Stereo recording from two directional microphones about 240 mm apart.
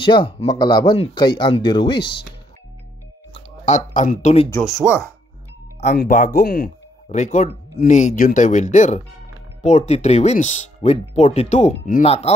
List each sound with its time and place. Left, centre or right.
0.0 s speech: left
3.3 s speech: left
4.5 s speech: centre
5.8 s speech: left